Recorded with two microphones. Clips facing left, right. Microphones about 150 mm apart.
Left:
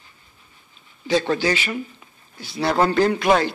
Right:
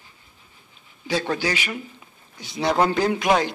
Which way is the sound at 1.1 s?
10° right (ahead or behind).